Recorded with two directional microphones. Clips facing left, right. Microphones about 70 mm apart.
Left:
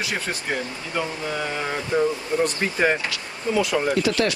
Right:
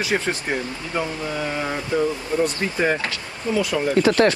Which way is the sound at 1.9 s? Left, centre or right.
Left.